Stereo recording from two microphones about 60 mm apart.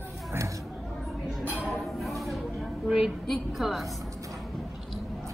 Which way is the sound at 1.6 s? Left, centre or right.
Centre.